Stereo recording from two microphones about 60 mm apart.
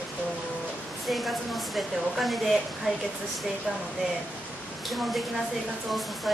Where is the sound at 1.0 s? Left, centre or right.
Centre.